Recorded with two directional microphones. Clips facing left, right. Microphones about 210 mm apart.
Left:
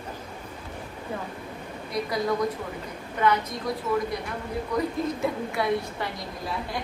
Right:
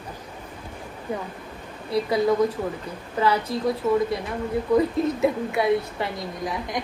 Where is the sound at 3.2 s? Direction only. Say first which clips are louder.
Right 2 dB; 30° right (ahead or behind).